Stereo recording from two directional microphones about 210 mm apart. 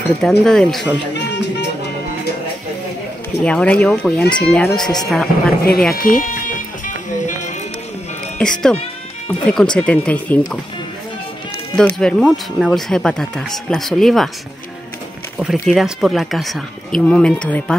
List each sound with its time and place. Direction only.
0.0 s speech: 5° left (ahead or behind)
1.1 s music: 55° left (ahead or behind)
3.4 s speech: 5° left (ahead or behind)
5.9 s speech: 40° left (ahead or behind)
8.4 s speech: 5° left (ahead or behind)
11.7 s speech: 5° left (ahead or behind)
15.3 s speech: 5° right (ahead or behind)